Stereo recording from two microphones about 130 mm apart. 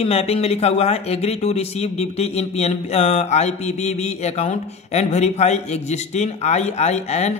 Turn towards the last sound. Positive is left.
turn(degrees=60)  # may be behind; listen again after turning